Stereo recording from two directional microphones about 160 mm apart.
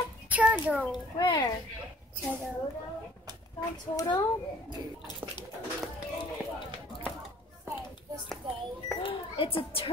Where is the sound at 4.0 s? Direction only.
25° left (ahead or behind).